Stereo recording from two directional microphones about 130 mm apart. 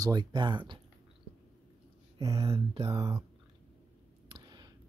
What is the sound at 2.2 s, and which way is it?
Speech, 25° right (ahead or behind).